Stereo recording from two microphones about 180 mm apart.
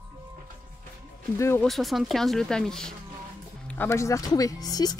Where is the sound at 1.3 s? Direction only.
15° left (ahead or behind).